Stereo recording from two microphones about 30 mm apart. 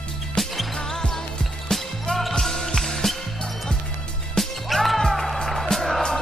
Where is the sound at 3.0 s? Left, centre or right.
Centre.